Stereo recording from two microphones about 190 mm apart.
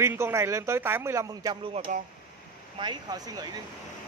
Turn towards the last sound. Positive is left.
turn(degrees=-20)  # may be behind; listen again after turning